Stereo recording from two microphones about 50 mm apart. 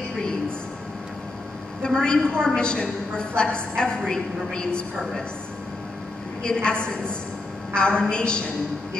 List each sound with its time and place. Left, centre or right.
1.8 s a woman's voice: centre
6.4 s a woman's voice: centre